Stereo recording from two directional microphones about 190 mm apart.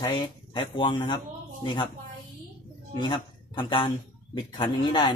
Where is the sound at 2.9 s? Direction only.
25° left (ahead or behind).